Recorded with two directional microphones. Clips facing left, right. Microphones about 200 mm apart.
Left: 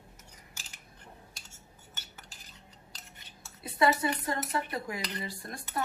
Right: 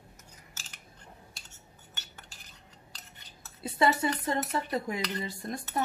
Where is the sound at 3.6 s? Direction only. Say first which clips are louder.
Right 1 dB; 25° right (ahead or behind).